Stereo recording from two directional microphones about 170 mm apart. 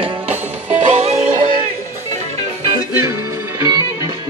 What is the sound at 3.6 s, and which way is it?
Music, 20° right (ahead or behind).